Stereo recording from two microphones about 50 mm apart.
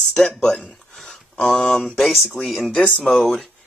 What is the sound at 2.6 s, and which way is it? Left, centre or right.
Speech, left.